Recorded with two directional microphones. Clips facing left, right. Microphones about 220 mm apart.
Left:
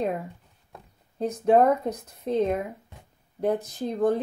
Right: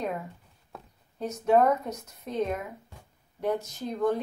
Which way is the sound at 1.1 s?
30° left (ahead or behind).